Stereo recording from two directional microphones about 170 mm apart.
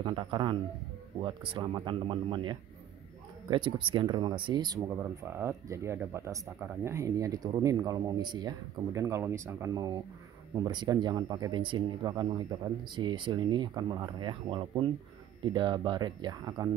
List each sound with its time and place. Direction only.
0.0 s speech: 30° right (ahead or behind)